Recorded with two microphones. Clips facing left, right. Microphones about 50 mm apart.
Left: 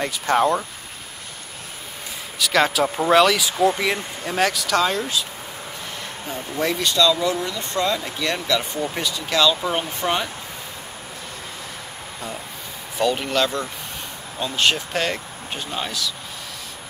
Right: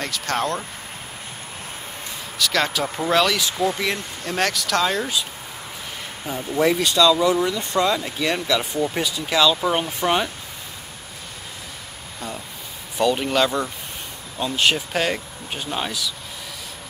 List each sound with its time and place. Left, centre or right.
0.0 s speech: centre
2.3 s speech: centre
6.2 s speech: centre
12.9 s speech: centre